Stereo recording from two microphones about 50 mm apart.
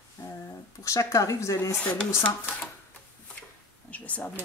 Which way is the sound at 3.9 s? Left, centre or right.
Left.